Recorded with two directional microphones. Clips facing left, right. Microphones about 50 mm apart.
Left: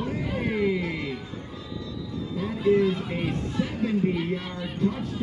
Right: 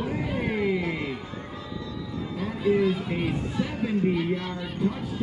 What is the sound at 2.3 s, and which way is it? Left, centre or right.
A man's voice, centre.